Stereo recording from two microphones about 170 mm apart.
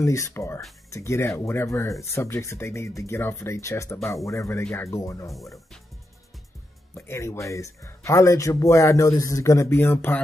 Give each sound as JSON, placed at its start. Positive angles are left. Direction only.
{"t": 0.0, "sound": "speech", "side_deg": 15}
{"t": 4.6, "sound": "speech", "side_deg": 5}
{"t": 4.9, "sound": "speech", "side_deg": 20}
{"t": 6.9, "sound": "speech", "side_deg": 15}